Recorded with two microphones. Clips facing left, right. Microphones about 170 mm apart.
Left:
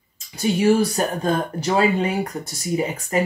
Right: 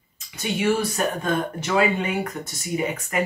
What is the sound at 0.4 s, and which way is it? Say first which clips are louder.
Speech: left 5 dB; 35° left (ahead or behind).